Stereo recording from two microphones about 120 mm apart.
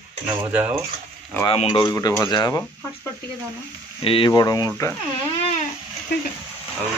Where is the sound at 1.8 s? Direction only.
25° left (ahead or behind).